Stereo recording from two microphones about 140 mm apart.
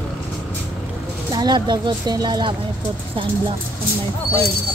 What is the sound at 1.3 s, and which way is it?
Speech, 30° right (ahead or behind).